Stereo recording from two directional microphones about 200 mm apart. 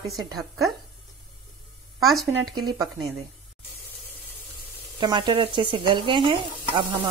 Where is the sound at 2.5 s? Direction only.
20° right (ahead or behind).